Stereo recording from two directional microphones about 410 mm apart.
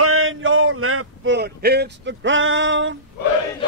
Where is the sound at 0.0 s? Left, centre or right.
Right.